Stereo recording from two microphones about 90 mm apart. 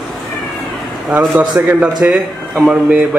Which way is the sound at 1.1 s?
15° right (ahead or behind).